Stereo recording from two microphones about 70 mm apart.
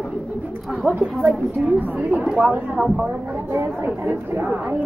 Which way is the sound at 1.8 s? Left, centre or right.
Right.